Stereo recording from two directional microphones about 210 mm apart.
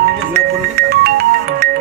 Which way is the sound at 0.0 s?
45° right (ahead or behind).